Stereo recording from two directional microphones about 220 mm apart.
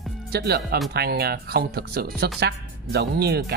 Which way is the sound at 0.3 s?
45° right (ahead or behind).